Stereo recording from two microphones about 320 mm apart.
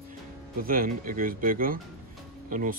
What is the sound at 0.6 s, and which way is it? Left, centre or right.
Speech, right.